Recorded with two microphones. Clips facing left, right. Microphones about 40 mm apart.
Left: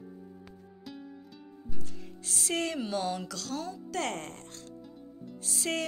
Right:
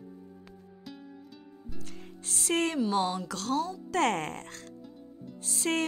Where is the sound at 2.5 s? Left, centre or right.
Right.